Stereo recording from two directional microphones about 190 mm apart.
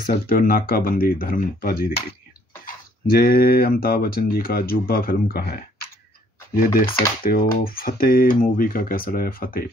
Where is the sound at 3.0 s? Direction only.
50° left (ahead or behind).